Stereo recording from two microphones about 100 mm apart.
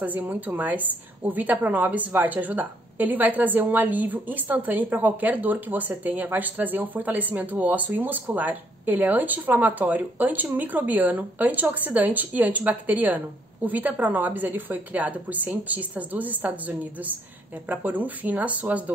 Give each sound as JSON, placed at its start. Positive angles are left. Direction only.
{"t": 0.0, "sound": "a woman's voice", "side_deg": -15}